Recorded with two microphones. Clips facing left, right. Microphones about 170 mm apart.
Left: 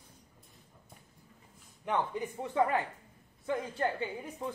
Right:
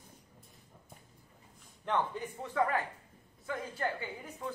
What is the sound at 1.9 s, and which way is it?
A man's voice, 15° left (ahead or behind).